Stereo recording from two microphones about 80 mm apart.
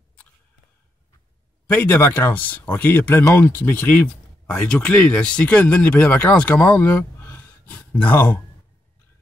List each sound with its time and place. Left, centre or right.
1.7 s speech: left